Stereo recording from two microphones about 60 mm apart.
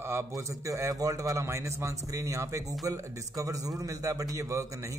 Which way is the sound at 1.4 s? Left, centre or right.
Right.